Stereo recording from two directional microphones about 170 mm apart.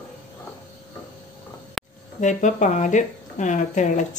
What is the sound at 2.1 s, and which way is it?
Speech, 45° left (ahead or behind).